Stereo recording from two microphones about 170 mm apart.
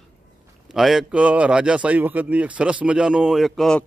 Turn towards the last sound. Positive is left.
turn(degrees=0)  # may be behind; listen again after turning